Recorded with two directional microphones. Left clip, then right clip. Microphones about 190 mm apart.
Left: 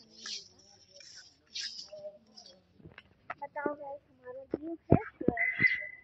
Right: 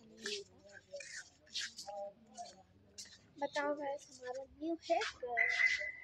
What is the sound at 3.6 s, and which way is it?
Speech, 25° right (ahead or behind).